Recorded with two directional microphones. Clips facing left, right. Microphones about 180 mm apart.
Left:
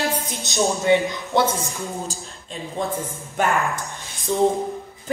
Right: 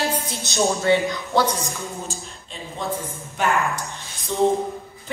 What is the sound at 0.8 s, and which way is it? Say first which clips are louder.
Speech: left 1 dB; 20° left (ahead or behind).